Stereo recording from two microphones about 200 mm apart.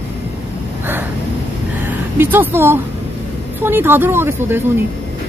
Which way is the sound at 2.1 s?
10° right (ahead or behind).